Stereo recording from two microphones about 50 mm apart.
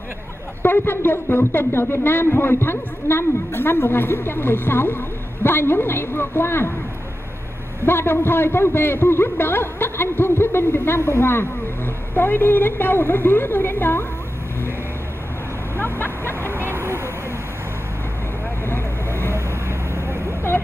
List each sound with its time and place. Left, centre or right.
0.6 s speech: left
7.8 s speech: left
11.0 s speech: left
15.8 s a sound: left
16.5 s vehicle: right
18.7 s vehicle: left